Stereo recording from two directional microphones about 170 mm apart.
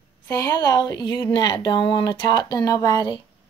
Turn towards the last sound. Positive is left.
turn(degrees=25)  # may be behind; listen again after turning